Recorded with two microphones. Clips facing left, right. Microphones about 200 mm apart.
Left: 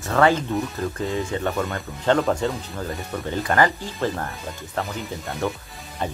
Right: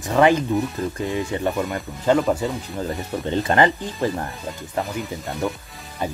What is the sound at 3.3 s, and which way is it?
Speech, 25° right (ahead or behind).